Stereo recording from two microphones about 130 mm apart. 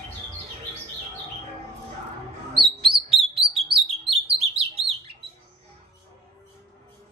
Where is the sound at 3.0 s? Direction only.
50° right (ahead or behind).